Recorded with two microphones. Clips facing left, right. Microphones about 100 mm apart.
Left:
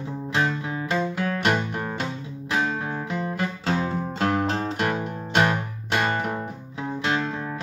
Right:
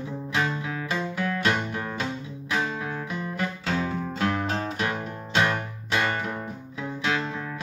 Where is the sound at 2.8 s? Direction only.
35° left (ahead or behind).